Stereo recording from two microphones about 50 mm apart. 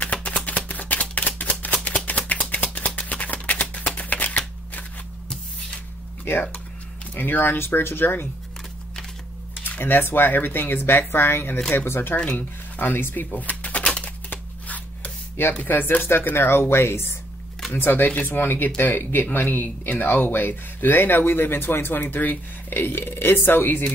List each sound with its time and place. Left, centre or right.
0.0 s a sound: left
0.5 s shuffling cards: left
1.0 s a sound: left
3.9 s shuffling cards: left
6.2 s speech: left
9.8 s speech: left
13.3 s typewriter: left
13.8 s a sound: left
15.5 s speech: left
16.3 s speech: left